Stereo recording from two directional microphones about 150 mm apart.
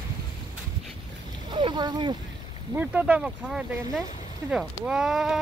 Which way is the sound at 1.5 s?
30° right (ahead or behind).